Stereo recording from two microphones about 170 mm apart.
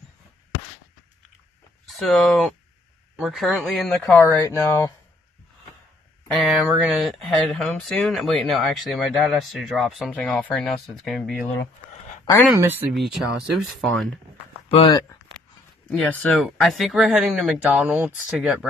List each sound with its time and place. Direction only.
1.9 s speech: centre (ahead or behind); by 4.9 s 15° left (ahead or behind)
6.3 s speech: 5° right (ahead or behind)
12.5 s speech: 10° right (ahead or behind)
12.9 s speech: centre (ahead or behind)
14.7 s speech: 30° left (ahead or behind)
15.9 s speech: 5° left (ahead or behind)